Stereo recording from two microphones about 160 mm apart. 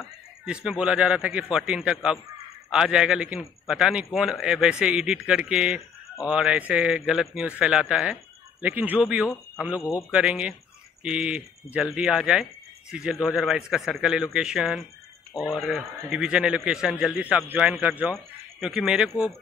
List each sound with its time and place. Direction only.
0.5 s a man's voice: 5° right (ahead or behind)
9.8 s a man's voice: 20° left (ahead or behind)
10.1 s a man's voice: 5° right (ahead or behind)